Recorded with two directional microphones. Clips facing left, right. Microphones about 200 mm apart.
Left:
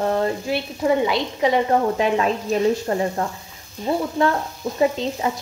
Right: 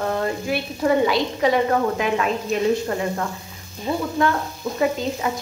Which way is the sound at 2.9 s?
30° left (ahead or behind).